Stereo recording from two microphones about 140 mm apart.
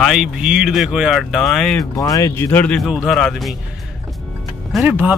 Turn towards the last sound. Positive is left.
turn(degrees=-10)  # may be behind; listen again after turning